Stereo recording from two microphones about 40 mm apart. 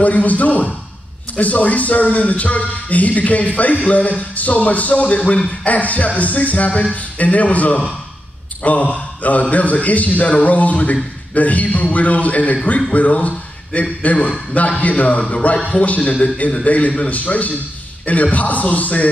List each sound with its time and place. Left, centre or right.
0.0 s speech: left